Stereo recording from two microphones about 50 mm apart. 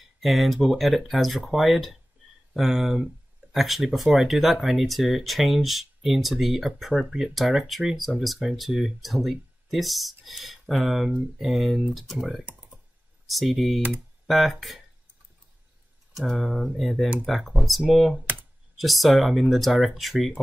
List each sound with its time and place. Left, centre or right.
0.2 s speech: centre
16.1 s speech: centre